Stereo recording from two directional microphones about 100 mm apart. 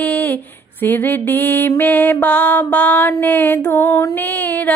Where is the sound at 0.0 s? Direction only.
15° left (ahead or behind).